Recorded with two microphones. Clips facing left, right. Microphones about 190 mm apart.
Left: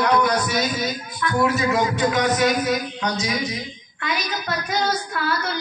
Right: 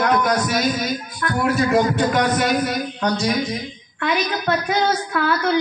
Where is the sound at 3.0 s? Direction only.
55° right (ahead or behind).